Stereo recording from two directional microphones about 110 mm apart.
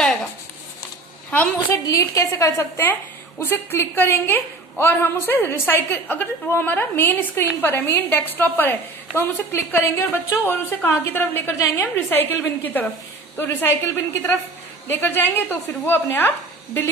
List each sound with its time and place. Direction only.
1.3 s speech: 10° left (ahead or behind)
1.9 s a woman's voice: 30° left (ahead or behind)